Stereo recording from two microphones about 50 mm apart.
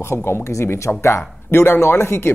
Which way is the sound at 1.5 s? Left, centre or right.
Left.